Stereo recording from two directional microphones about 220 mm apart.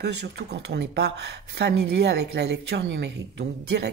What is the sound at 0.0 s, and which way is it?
A woman's voice, 50° right (ahead or behind).